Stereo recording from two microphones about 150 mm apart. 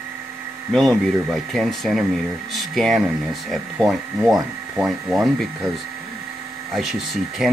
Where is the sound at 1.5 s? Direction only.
Centre (ahead or behind).